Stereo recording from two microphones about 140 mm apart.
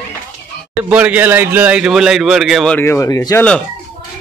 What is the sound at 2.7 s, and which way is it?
Speech, 15° left (ahead or behind).